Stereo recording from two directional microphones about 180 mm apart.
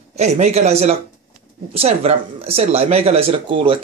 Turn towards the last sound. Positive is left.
turn(degrees=-30)  # may be behind; listen again after turning